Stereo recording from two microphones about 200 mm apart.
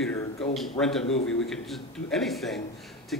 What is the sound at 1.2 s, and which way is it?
Speech, 75° left (ahead or behind).